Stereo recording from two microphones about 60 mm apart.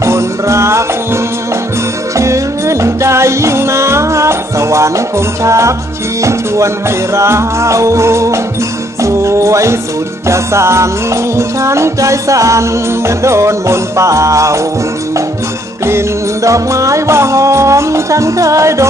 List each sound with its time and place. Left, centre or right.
0.0 s music: right
15.8 s music: right